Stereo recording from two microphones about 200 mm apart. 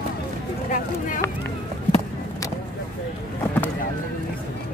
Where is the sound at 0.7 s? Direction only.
40° left (ahead or behind).